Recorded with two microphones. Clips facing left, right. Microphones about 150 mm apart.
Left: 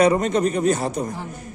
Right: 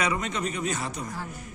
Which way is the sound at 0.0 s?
40° left (ahead or behind).